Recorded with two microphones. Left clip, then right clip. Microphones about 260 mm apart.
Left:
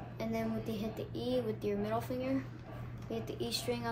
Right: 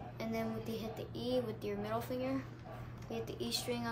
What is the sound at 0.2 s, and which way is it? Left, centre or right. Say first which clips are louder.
A woman's voice: left 2 dB; centre.